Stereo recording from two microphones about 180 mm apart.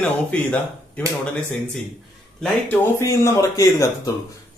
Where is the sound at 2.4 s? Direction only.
10° left (ahead or behind).